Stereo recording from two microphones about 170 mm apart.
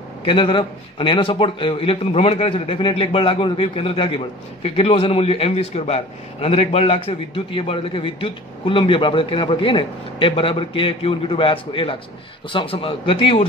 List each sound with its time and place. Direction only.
0.2 s a man's voice: 30° left (ahead or behind)